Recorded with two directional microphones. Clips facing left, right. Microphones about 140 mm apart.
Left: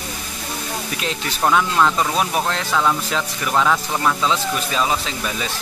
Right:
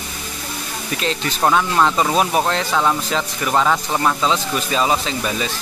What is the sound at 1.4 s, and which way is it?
Speech, 10° right (ahead or behind).